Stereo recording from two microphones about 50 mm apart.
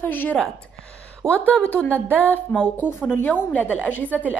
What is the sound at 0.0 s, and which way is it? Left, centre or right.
Speech, left.